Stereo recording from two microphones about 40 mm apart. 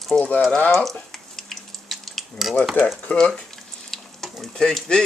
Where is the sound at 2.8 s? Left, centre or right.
Left.